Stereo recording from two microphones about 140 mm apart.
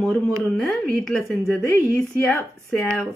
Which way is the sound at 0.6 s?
5° left (ahead or behind).